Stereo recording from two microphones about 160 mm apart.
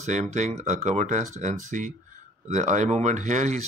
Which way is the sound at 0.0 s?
50° right (ahead or behind).